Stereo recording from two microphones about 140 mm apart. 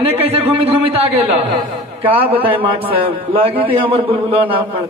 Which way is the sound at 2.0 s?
40° right (ahead or behind).